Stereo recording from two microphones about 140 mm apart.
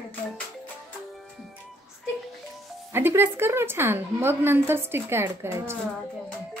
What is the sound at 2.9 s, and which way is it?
A woman's voice, 15° right (ahead or behind).